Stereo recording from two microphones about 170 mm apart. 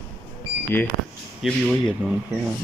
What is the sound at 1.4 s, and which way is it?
Speech, centre (ahead or behind).